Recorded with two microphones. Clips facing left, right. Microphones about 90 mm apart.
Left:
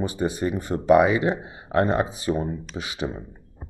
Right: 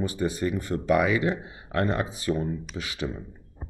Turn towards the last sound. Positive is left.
turn(degrees=25)  # may be behind; listen again after turning